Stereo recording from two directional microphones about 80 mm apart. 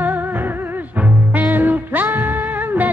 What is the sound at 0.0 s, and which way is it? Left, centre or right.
Music, right.